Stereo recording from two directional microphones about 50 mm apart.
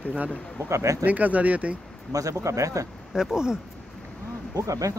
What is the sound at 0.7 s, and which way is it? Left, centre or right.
Speech, right.